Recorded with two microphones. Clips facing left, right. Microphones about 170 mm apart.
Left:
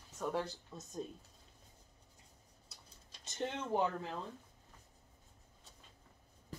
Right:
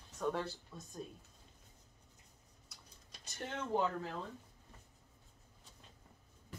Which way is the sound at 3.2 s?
20° left (ahead or behind).